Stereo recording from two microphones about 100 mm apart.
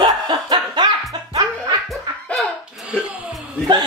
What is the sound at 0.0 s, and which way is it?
Laughter, 50° right (ahead or behind).